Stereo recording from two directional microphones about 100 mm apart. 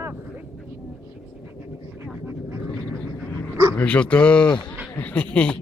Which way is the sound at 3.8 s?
15° left (ahead or behind).